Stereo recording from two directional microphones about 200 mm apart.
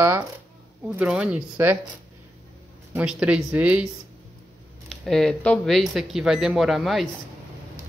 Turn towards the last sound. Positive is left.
turn(degrees=0)  # may be behind; listen again after turning